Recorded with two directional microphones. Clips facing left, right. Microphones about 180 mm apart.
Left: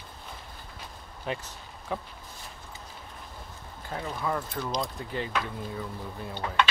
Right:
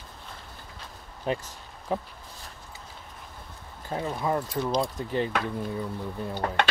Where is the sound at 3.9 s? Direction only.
25° right (ahead or behind).